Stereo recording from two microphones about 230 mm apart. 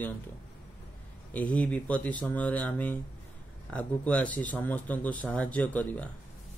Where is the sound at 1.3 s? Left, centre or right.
Centre.